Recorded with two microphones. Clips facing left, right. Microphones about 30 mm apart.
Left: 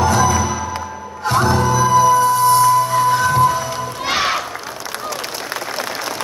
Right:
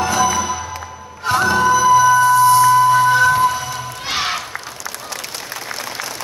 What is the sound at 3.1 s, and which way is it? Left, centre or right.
Music, right.